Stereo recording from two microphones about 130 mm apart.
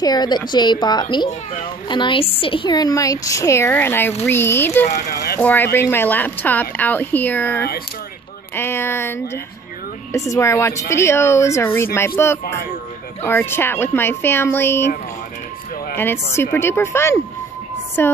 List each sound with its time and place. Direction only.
0.0 s a woman's voice: 30° left (ahead or behind)
16.0 s a woman's voice: 20° left (ahead or behind)